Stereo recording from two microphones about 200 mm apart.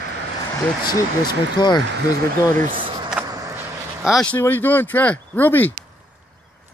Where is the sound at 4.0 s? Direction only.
Centre (ahead or behind).